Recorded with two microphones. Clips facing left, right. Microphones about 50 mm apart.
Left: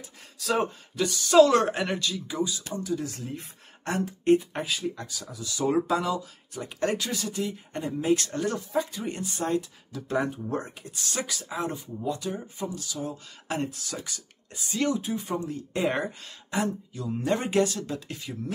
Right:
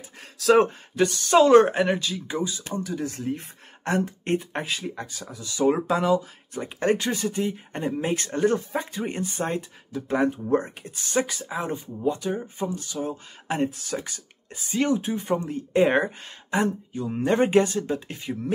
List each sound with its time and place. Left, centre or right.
0.4 s speech: right
0.9 s speech: right
1.4 s speech: right
1.8 s speech: centre
2.1 s speech: right